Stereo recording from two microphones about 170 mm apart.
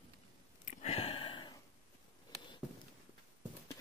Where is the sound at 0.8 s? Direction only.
35° left (ahead or behind).